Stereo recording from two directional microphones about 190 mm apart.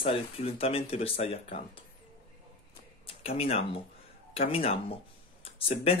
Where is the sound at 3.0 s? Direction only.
30° left (ahead or behind).